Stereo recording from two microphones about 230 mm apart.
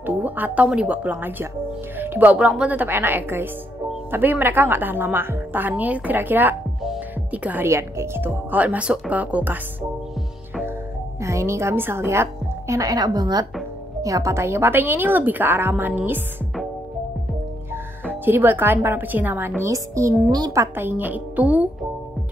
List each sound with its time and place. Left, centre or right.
0.0 s a woman's voice: centre
11.1 s a woman's voice: centre
18.0 s a woman's voice: centre